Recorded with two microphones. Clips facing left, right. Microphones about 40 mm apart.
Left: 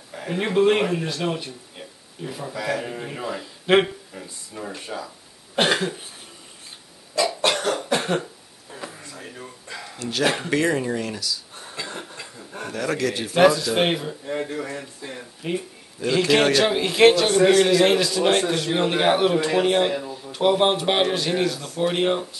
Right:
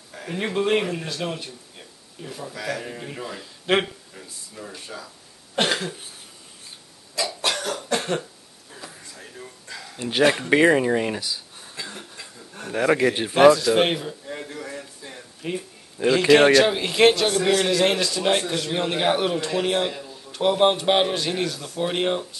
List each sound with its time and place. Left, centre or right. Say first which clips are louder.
0.1 s a man's voice: left 4 dB; centre
4.1 s speech: left 4 dB; centre
5.6 s speech: left 3 dB; centre
7.2 s cough: left 4 dB; left
7.9 s cough: left 2 dB; centre
8.7 s a sound: left 4 dB; left
9.9 s speech: right 3 dB; right
12.7 s speech: right 5 dB; right
13.4 s speech: right 2 dB; centre
14.2 s speech: left 6 dB; left
16.1 s speech: right 3 dB; centre